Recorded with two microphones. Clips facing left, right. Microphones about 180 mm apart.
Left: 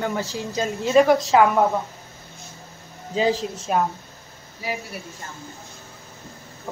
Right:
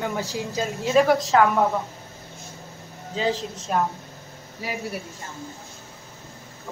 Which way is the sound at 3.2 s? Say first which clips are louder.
Left 4 dB; 15° left (ahead or behind).